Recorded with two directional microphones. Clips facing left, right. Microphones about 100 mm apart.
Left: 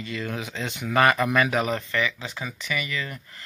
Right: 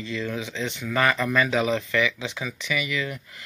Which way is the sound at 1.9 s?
35° left (ahead or behind).